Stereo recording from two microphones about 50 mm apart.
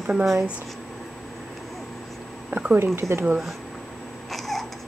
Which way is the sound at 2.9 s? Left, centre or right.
Right.